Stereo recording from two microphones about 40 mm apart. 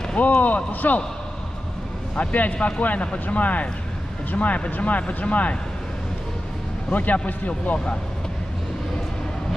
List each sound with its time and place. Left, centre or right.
0.2 s speech: left
2.1 s speech: left
6.9 s speech: left